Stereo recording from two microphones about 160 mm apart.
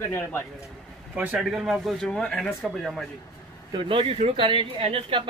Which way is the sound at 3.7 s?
30° right (ahead or behind).